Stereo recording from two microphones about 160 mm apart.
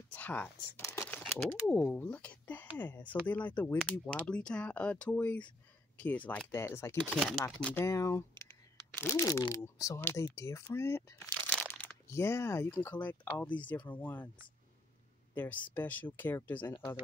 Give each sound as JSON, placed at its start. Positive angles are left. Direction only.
{"t": 0.1, "sound": "speech", "side_deg": 10}
{"t": 0.7, "sound": "a sound", "side_deg": 20}
{"t": 1.2, "sound": "speech", "side_deg": 5}
{"t": 7.2, "sound": "speech", "side_deg": 0}
{"t": 7.8, "sound": "speech", "side_deg": 20}
{"t": 12.1, "sound": "speech", "side_deg": 15}
{"t": 15.3, "sound": "speech", "side_deg": 10}